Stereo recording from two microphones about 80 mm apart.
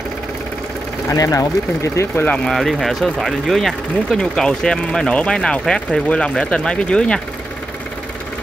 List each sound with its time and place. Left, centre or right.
1.1 s speech: left
2.1 s speech: centre
2.4 s speech: centre